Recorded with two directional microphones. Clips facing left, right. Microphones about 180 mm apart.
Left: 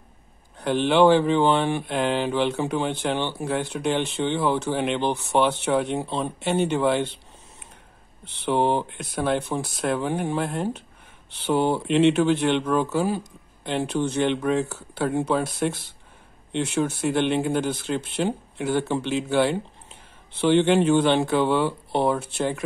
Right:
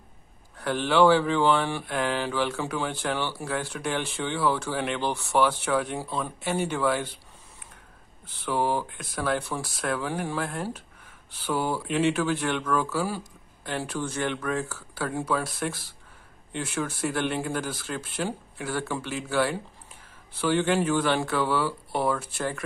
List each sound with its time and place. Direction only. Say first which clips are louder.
0.6 s speech: left 3 dB; 20° left (ahead or behind)
8.3 s speech: left 5 dB; 25° left (ahead or behind)